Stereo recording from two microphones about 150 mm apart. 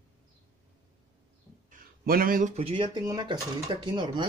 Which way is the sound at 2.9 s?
30° right (ahead or behind).